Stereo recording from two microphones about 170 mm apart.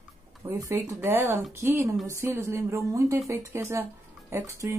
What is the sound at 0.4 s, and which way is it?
Speech, 15° right (ahead or behind).